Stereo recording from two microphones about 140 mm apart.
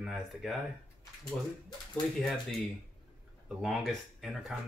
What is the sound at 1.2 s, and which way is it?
Speech, 30° left (ahead or behind).